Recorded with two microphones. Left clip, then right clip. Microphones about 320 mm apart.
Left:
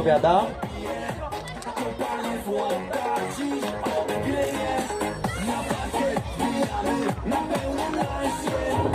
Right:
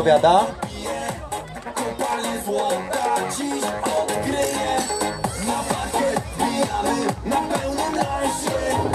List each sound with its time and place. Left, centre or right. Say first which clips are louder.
0.0 s speech: right 4 dB; right
1.8 s music: right 5 dB; right